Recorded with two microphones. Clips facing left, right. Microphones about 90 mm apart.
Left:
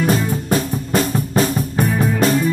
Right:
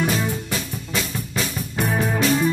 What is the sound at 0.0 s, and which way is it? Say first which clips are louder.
Music: left 5 dB; 45° left (ahead or behind).